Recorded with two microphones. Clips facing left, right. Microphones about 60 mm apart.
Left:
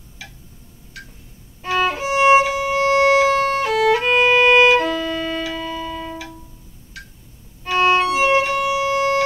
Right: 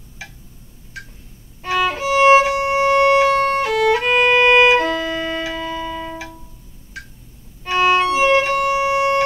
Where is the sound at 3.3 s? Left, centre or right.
Centre.